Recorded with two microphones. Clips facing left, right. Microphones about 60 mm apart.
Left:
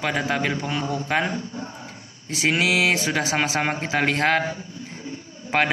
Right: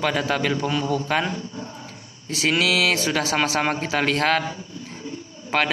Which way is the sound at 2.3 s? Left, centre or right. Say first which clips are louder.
Even; left.